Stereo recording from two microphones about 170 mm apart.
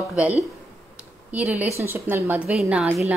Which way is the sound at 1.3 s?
10° right (ahead or behind).